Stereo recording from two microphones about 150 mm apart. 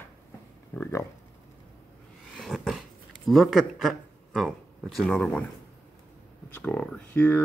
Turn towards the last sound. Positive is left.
turn(degrees=10)  # may be behind; listen again after turning